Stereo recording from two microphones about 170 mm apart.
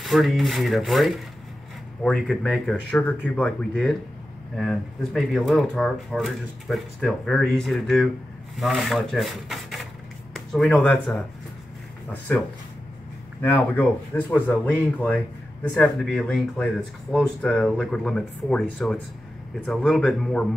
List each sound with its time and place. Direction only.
0.0 s speech: centre (ahead or behind)